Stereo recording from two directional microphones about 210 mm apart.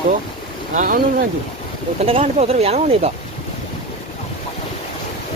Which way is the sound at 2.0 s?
30° right (ahead or behind).